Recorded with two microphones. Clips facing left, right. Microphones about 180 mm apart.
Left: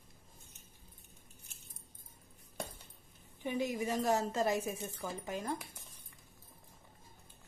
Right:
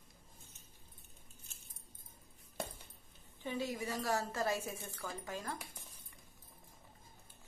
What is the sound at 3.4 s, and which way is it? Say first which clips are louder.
A woman's voice: left 4 dB; 15° left (ahead or behind).